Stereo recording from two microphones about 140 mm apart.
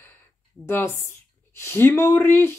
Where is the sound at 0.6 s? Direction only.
15° left (ahead or behind).